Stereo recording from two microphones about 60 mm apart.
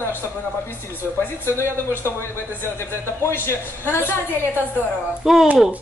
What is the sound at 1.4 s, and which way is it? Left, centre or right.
A man's voice, left.